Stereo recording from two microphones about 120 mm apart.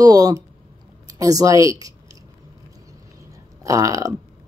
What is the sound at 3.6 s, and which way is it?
Speech, 25° right (ahead or behind).